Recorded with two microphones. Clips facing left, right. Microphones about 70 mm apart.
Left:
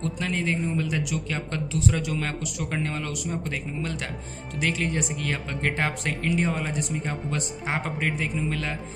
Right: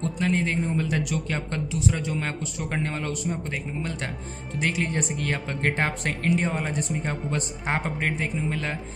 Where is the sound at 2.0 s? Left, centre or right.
Right.